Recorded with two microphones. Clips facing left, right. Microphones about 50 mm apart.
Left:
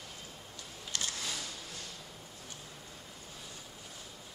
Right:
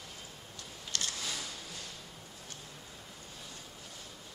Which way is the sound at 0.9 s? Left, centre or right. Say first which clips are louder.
Right 1 dB; centre.